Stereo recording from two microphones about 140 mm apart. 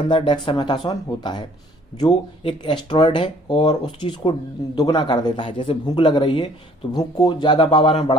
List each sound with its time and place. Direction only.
0.1 s speech: 35° left (ahead or behind)